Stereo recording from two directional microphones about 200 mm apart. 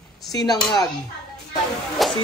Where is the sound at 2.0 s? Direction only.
Centre (ahead or behind).